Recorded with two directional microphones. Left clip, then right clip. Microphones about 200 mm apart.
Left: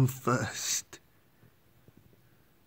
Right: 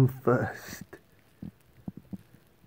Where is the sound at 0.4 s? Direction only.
30° left (ahead or behind).